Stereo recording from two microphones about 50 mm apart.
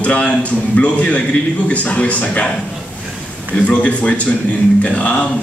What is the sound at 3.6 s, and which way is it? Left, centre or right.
A man's voice, left.